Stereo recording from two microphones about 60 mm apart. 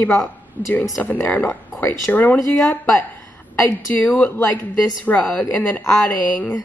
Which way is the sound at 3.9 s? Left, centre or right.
Left.